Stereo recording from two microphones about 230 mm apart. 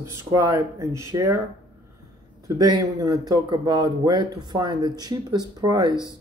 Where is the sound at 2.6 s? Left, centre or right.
Centre.